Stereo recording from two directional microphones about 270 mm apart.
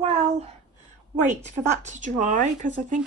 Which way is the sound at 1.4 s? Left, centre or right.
Right.